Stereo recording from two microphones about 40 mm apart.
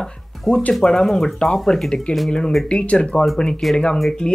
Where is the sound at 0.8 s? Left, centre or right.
Centre.